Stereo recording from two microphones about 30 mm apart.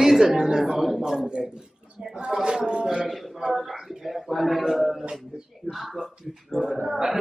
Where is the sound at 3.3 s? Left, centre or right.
Centre.